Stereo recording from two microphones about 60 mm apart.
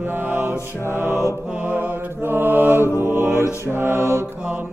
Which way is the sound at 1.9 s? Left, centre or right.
Right.